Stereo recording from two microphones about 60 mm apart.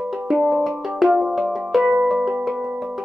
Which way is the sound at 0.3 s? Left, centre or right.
Centre.